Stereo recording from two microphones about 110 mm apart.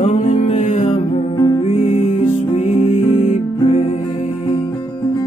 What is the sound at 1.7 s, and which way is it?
Music, 80° left.